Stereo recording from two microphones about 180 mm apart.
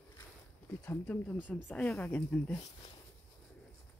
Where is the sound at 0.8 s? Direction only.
10° left (ahead or behind).